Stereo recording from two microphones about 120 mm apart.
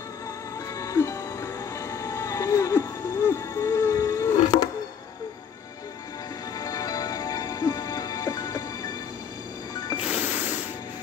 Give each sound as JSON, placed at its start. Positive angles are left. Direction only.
{"t": 0.7, "sound": "music", "side_deg": 25}
{"t": 6.6, "sound": "music", "side_deg": 30}
{"t": 9.9, "sound": "music", "side_deg": -10}